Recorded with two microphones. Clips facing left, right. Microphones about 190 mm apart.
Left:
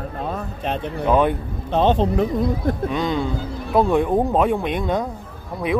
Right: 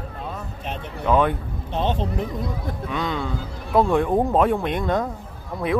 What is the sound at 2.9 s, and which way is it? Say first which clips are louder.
Speech: left 1 dB; 20° left (ahead or behind).